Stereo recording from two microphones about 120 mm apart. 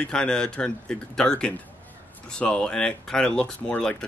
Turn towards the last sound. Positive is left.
turn(degrees=10)  # may be behind; listen again after turning